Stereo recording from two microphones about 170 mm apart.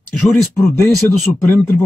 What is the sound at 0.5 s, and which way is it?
Speech, 15° left (ahead or behind).